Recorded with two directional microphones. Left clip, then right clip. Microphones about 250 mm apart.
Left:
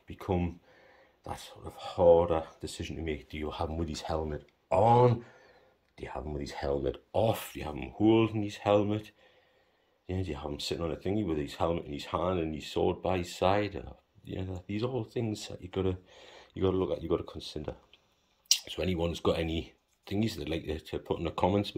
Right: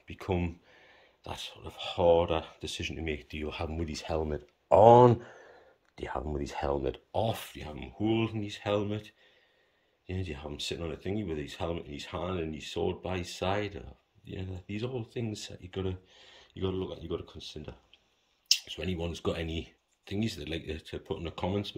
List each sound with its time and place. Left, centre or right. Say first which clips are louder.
0.0 s speech: even; centre
4.3 s speech: right 6 dB; centre